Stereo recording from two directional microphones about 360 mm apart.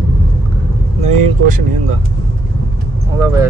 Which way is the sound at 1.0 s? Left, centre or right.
Right.